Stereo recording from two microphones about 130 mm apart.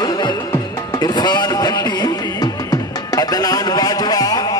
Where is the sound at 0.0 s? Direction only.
35° left (ahead or behind).